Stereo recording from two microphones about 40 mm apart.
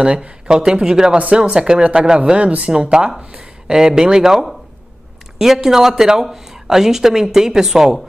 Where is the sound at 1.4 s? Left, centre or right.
Right.